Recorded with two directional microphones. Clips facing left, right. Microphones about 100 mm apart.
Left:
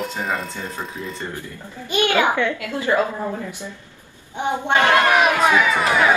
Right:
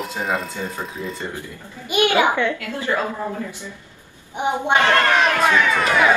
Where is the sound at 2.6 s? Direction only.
20° left (ahead or behind).